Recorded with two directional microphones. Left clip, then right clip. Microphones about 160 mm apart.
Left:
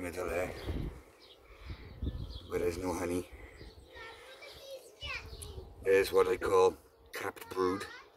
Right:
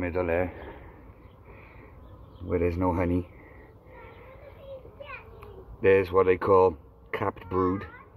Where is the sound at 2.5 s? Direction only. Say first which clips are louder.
Right 7 dB; 60° left (ahead or behind).